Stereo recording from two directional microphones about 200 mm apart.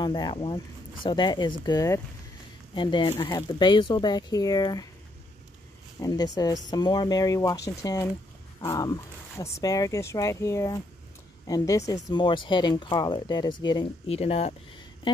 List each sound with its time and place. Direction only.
0.0 s speech: 25° left (ahead or behind)
5.9 s speech: 20° left (ahead or behind)